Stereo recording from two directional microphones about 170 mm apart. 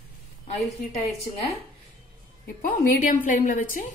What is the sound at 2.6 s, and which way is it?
A woman's voice, 50° left (ahead or behind).